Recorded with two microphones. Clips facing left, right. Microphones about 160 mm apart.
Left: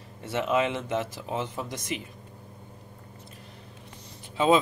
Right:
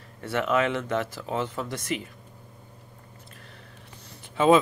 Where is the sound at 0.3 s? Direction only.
20° left (ahead or behind).